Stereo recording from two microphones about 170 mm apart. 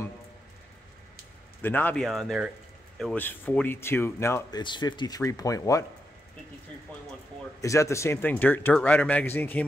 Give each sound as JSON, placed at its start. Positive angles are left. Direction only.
{"t": 1.6, "sound": "speech", "side_deg": 10}
{"t": 7.6, "sound": "speech", "side_deg": 15}